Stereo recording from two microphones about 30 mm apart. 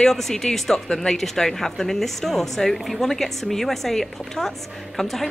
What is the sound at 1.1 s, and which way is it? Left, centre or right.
A woman's voice, centre.